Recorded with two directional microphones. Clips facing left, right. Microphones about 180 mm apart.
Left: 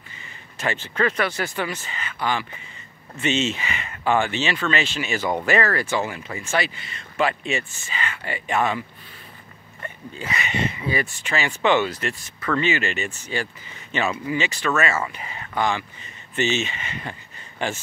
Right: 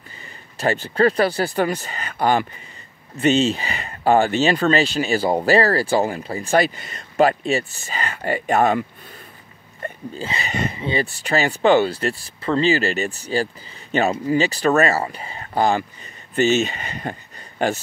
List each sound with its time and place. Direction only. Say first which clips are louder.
0.2 s speech: right 5 dB; 35° right (ahead or behind)
9.8 s speech: right 4 dB; 30° right (ahead or behind)